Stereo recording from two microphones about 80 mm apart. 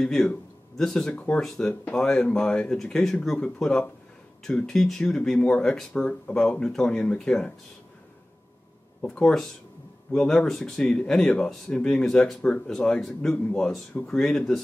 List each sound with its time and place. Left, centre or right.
0.0 s speech: centre
1.1 s speech: centre
9.0 s speech: centre